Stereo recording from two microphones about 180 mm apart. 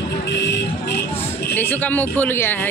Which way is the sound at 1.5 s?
10° left (ahead or behind).